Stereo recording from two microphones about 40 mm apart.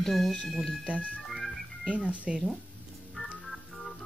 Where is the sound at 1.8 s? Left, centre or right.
Right.